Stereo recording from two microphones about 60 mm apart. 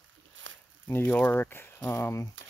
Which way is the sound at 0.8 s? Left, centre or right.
Left.